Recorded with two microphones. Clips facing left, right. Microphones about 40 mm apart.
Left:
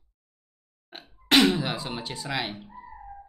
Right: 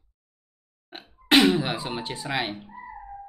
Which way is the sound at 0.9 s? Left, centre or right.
Centre.